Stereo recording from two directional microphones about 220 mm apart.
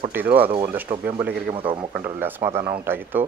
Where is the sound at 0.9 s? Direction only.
25° right (ahead or behind).